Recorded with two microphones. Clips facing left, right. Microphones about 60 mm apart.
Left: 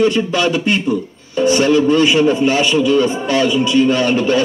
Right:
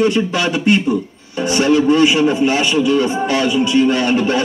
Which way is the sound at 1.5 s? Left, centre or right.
Right.